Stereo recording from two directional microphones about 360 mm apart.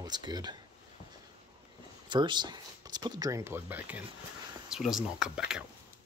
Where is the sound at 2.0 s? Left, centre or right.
Centre.